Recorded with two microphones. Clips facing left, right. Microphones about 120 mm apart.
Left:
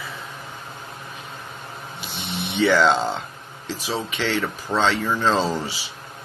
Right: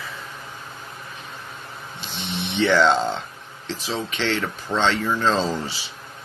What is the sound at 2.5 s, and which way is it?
Speech, 5° left (ahead or behind).